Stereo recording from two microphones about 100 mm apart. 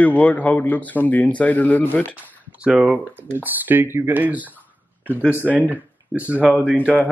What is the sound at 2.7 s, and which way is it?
Speech, 15° right (ahead or behind).